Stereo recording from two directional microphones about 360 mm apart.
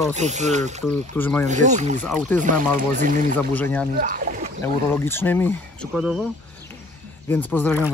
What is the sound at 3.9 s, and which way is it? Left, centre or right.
Speech, right.